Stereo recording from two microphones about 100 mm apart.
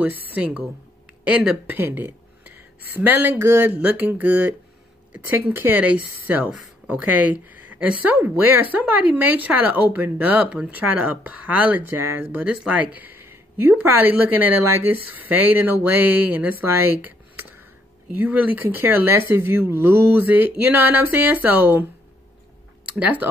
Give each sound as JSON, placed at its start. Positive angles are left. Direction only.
{"t": 0.0, "sound": "speech", "side_deg": -15}
{"t": 17.0, "sound": "a sound", "side_deg": -15}
{"t": 18.1, "sound": "speech", "side_deg": -15}
{"t": 22.8, "sound": "speech", "side_deg": -15}